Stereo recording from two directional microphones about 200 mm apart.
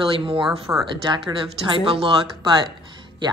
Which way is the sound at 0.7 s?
10° right (ahead or behind).